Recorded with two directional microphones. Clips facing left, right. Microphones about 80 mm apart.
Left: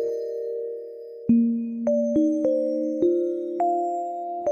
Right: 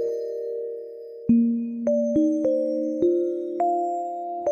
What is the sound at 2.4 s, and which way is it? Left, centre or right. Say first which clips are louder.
Electric piano: even; left.